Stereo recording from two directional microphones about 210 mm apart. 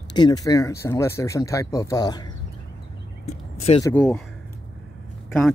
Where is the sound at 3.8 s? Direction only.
10° left (ahead or behind).